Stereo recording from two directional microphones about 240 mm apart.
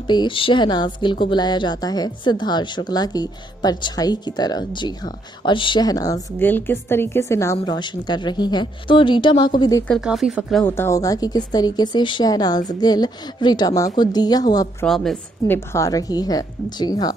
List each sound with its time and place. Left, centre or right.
0.0 s a woman's voice: centre
9.8 s speech: centre
14.9 s speech: centre